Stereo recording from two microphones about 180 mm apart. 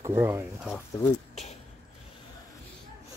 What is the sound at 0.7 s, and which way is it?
Speech, 20° left (ahead or behind).